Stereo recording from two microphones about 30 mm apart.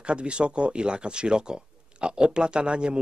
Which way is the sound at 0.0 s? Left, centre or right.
Right.